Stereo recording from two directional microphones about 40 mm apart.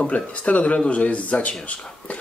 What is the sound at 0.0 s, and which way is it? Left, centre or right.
Speech, left.